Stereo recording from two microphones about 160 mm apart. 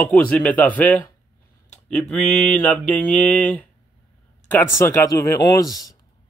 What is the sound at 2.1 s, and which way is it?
Speech, 5° left (ahead or behind).